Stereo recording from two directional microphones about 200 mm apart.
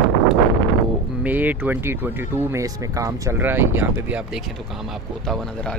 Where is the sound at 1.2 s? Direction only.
10° right (ahead or behind).